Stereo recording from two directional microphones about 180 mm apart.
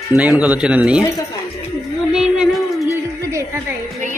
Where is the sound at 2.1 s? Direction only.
5° right (ahead or behind).